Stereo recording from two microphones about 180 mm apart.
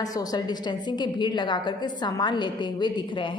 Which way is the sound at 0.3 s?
25° left (ahead or behind).